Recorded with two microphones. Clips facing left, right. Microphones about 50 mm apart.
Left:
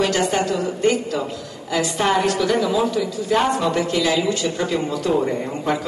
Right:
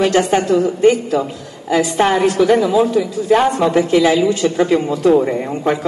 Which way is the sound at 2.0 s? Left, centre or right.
Centre.